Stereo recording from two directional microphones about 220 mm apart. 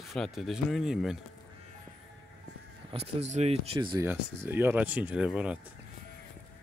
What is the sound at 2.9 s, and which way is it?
Speech, 30° right (ahead or behind).